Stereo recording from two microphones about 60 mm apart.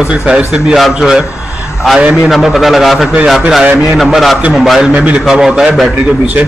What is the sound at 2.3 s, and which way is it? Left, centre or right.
A man's voice, centre.